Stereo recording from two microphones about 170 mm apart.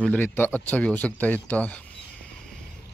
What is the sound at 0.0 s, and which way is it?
Speech, 10° left (ahead or behind).